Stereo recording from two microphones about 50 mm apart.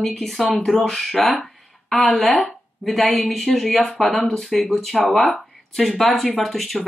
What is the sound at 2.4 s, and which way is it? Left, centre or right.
Speech, centre.